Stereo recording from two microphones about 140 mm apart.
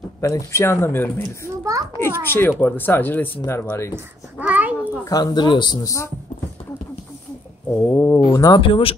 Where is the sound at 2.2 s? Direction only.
15° left (ahead or behind).